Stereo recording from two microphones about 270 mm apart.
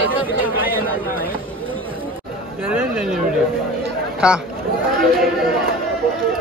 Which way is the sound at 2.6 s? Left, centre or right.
Centre.